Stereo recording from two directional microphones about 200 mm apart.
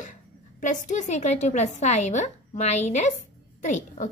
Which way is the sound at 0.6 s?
40° left (ahead or behind).